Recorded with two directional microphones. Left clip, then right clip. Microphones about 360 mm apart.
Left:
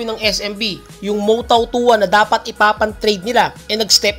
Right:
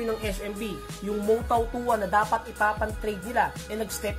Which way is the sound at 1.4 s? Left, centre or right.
Left.